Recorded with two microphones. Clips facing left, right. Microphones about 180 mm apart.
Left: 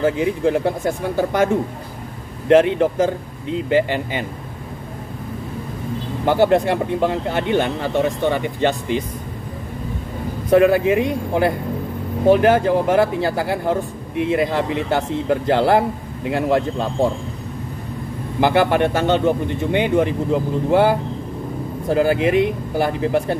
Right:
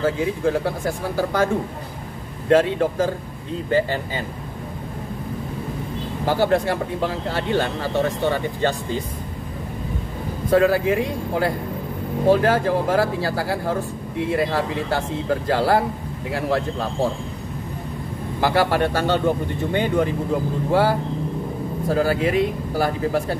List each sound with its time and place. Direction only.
0.0 s speech: 20° left (ahead or behind)
6.2 s speech: 25° left (ahead or behind)
10.5 s speech: 20° left (ahead or behind)
18.4 s speech: 20° left (ahead or behind)
21.8 s speech: 20° left (ahead or behind)